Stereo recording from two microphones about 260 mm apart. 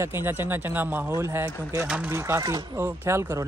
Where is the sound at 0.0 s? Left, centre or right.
Centre.